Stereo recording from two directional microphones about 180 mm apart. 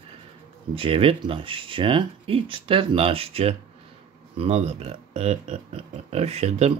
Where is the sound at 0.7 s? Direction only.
30° right (ahead or behind).